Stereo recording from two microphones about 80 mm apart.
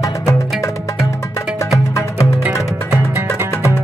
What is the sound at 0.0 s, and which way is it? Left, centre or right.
Music, left.